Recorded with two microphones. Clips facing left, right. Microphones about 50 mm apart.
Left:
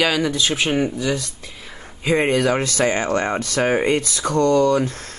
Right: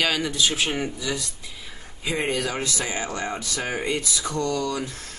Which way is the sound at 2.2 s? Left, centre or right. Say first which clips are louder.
Left 7 dB; centre.